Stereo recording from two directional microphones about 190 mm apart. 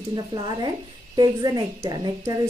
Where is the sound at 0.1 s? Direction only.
25° right (ahead or behind).